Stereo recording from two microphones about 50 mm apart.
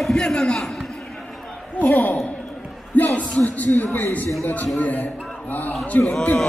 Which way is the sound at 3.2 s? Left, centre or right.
Left.